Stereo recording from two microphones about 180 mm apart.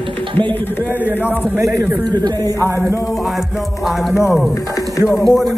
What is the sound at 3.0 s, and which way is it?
Music, centre (ahead or behind).